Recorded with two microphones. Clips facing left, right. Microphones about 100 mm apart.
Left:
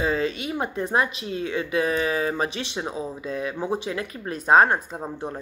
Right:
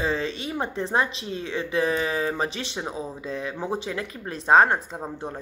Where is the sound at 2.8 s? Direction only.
15° left (ahead or behind).